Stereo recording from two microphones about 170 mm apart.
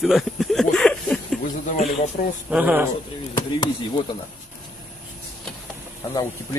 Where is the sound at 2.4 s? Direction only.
5° right (ahead or behind).